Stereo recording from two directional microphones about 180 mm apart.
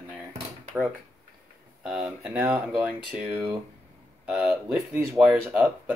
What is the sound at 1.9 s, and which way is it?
Speech, 5° right (ahead or behind).